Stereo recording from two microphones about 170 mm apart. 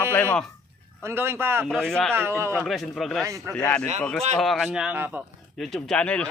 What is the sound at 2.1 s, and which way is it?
Speech, 15° right (ahead or behind).